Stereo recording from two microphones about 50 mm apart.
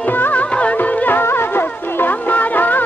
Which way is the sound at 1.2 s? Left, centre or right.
Left.